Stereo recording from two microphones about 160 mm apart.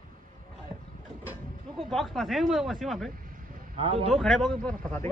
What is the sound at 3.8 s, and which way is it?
Speech, 35° right (ahead or behind).